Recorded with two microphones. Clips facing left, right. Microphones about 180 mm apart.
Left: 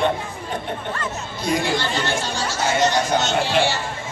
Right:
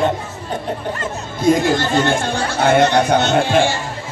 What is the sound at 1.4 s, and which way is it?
Speech, 50° right (ahead or behind).